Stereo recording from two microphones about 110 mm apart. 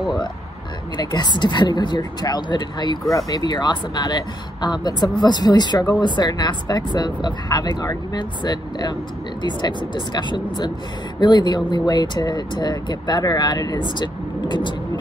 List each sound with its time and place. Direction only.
0.9 s speech: 40° left (ahead or behind)